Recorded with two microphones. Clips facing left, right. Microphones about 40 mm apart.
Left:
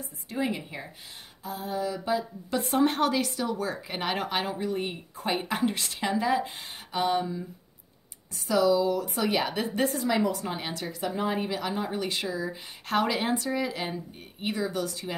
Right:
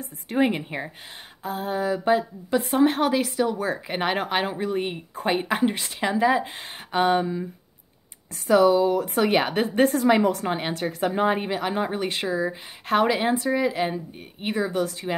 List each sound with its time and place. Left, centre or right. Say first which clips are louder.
0.0 s a woman's voice: right 8 dB; right
2.6 s a woman's voice: right 3 dB; centre; by 12.5 s right
12.8 s speech: right 5 dB; centre
13.9 s a woman's voice: right 4 dB; right